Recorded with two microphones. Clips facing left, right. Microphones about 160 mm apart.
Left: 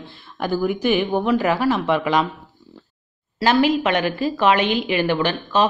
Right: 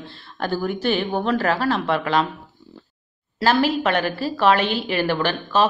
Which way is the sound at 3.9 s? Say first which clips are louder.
Left 2 dB; 45° right (ahead or behind).